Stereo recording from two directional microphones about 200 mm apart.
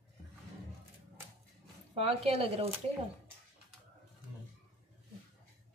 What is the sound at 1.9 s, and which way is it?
Speech, 30° right (ahead or behind).